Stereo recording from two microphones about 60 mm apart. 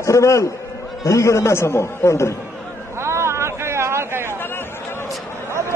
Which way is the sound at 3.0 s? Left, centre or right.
Right.